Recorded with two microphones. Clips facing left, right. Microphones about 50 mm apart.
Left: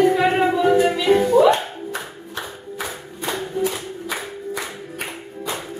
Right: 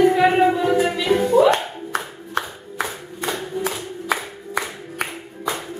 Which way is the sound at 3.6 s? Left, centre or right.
Right.